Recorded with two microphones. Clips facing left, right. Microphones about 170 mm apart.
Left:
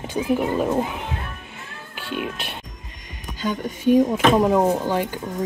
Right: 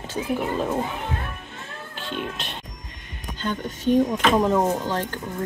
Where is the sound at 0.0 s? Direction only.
10° left (ahead or behind).